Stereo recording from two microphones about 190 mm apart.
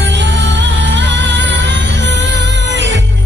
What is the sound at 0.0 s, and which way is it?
Music, 70° right (ahead or behind).